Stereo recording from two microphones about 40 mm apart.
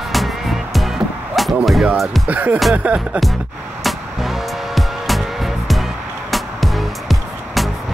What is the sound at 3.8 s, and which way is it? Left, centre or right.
Music, centre.